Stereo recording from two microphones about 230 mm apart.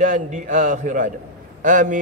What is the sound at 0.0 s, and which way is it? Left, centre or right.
A man's voice, right.